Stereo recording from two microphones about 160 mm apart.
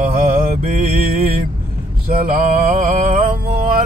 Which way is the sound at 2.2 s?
60° right (ahead or behind).